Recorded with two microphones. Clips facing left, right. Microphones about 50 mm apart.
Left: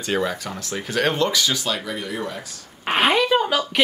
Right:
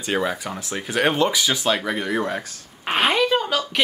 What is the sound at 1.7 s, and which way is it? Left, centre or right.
Speech, right.